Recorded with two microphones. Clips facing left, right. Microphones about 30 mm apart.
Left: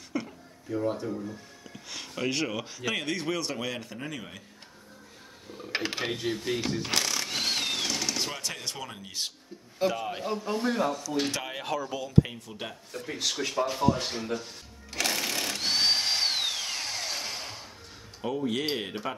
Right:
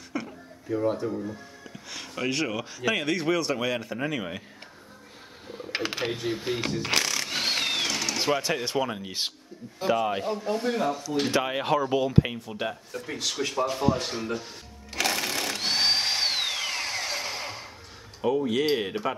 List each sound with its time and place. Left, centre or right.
0.1 s a sound: centre
0.7 s speech: centre
1.9 s speech: centre
4.0 s speech: right
5.7 s computer keyboard: centre
6.0 s speech: centre
6.3 s speech: centre
7.2 s a sound: centre
8.2 s speech: centre
10.2 s speech: centre
11.3 s speech: right
12.4 s speech: centre
12.9 s a sound: centre
18.2 s speech: centre